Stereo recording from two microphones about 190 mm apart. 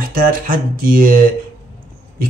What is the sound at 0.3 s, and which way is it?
Speech, 45° right (ahead or behind).